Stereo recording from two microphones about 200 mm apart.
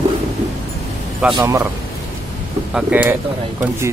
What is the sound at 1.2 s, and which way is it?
Speech, 5° right (ahead or behind).